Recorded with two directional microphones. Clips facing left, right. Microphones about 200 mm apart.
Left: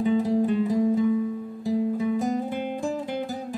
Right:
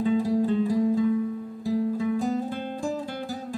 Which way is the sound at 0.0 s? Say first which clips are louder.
Left 1 dB; 20° left (ahead or behind).